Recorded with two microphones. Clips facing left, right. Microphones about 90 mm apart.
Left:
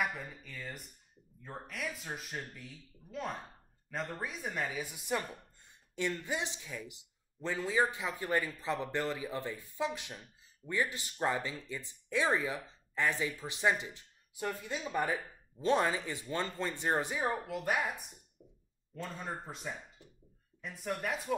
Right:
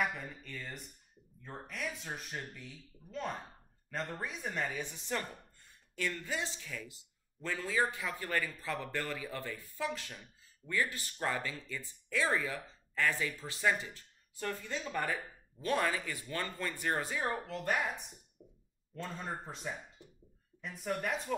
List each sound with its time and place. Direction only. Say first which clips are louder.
0.0 s speech: even; 5° left (ahead or behind)
18.4 s a sound: right 2 dB; 5° right (ahead or behind)
19.0 s speech: even; centre (ahead or behind)